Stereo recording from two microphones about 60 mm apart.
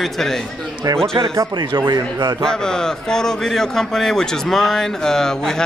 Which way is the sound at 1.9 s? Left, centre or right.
Right.